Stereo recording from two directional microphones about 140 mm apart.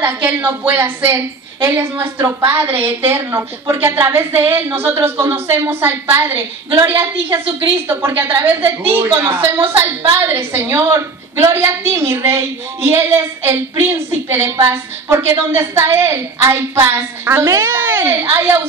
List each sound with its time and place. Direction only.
0.0 s a woman's voice: 15° right (ahead or behind)